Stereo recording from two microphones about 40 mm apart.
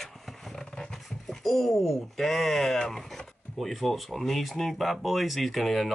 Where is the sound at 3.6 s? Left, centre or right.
Centre.